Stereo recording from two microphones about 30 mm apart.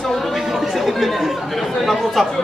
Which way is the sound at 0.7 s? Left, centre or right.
Centre.